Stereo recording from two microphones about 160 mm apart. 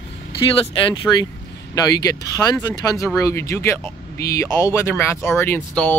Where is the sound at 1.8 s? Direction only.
20° left (ahead or behind).